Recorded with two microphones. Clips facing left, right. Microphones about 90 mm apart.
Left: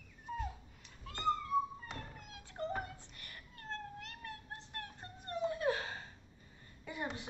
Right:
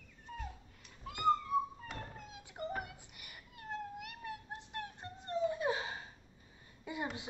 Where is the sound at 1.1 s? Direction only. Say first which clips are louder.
Right 4 dB; 10° right (ahead or behind).